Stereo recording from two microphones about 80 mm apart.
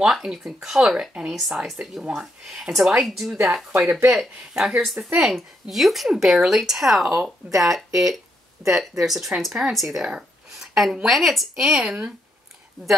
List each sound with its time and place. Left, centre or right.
0.0 s speech: centre